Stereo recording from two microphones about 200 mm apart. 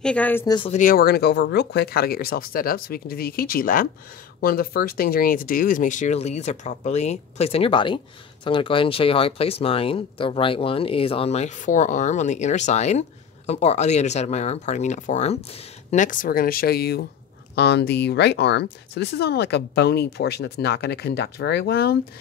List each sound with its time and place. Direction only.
0.0 s speech: 5° left (ahead or behind)
0.6 s speech: 35° left (ahead or behind); by 21.9 s 55° left (ahead or behind)